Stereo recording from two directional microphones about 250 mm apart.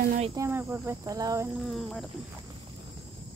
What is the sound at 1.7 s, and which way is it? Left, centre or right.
Speech, centre.